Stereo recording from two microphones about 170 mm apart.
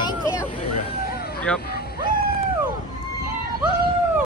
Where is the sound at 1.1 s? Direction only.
65° left (ahead or behind).